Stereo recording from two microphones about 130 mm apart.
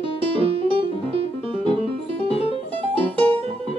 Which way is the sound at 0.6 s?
40° right (ahead or behind).